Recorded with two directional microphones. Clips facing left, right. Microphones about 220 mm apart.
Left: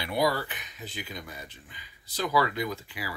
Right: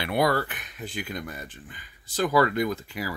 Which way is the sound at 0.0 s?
60° right (ahead or behind).